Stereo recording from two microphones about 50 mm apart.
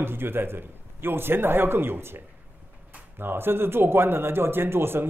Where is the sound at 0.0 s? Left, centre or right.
Right.